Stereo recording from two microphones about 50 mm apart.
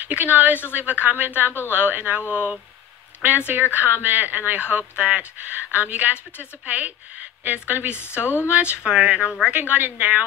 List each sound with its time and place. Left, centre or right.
0.0 s a woman's voice: right
9.5 s speech: right